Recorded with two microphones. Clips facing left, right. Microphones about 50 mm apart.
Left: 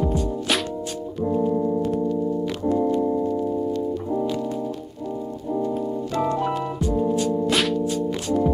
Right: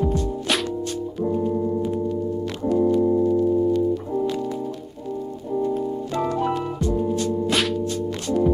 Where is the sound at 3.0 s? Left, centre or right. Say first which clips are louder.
Right 4 dB; centre.